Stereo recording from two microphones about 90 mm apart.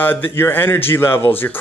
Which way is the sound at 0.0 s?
20° left (ahead or behind).